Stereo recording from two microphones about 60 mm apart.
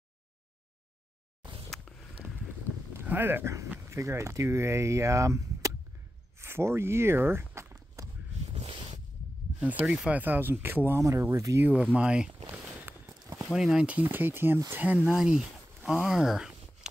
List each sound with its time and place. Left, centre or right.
2.2 s a sound: right
3.1 s speech: right
3.9 s speech: right
6.4 s speech: right
7.7 s walk: right
9.7 s speech: right
11.0 s speech: right
11.7 s a sound: right
13.5 s speech: centre
14.0 s speech: right
14.7 s speech: right
15.0 s speech: centre